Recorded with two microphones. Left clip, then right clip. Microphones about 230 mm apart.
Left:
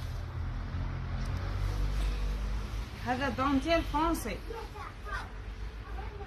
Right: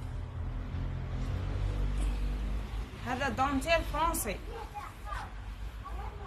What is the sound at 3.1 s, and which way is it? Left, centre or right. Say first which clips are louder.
Speech: even; right.